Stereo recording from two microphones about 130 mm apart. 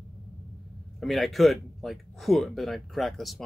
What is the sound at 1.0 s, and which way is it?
Speech, centre (ahead or behind).